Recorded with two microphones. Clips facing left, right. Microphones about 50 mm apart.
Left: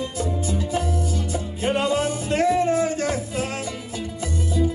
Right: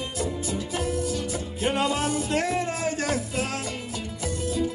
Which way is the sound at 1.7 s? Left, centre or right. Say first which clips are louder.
Left 3 dB; left.